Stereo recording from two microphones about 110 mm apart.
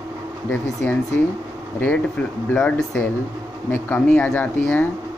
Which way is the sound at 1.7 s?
15° left (ahead or behind).